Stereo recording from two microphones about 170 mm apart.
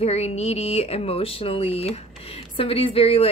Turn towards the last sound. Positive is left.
turn(degrees=35)  # may be behind; listen again after turning